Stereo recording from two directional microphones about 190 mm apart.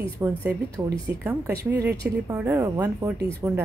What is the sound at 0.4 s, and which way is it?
Speech, 10° right (ahead or behind).